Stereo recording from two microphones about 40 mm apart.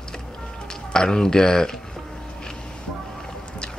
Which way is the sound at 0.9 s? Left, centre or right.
Centre.